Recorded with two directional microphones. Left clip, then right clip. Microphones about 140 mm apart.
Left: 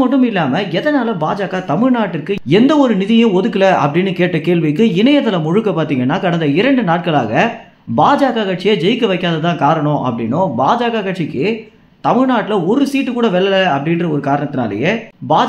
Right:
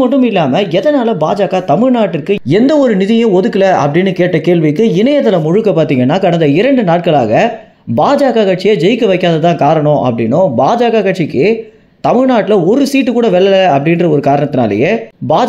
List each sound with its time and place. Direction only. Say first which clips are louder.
0.0 s speech: right 4 dB; 25° right (ahead or behind); by 15.4 s 50° right (ahead or behind)